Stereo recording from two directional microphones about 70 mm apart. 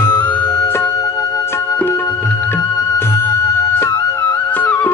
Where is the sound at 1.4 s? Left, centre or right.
Left.